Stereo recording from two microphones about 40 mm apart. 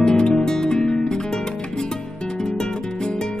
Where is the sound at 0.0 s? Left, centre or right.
Centre.